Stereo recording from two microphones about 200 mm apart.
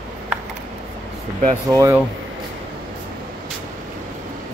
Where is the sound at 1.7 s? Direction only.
15° right (ahead or behind).